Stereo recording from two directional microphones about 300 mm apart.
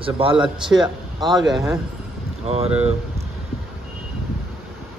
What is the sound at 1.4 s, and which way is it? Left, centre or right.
Speech, centre.